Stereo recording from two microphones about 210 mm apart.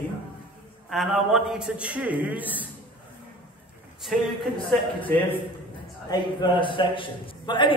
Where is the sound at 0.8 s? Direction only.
Centre (ahead or behind).